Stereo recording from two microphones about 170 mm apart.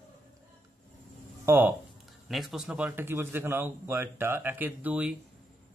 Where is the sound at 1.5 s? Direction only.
10° right (ahead or behind).